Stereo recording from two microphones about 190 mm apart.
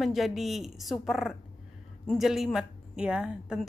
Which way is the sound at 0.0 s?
Centre (ahead or behind).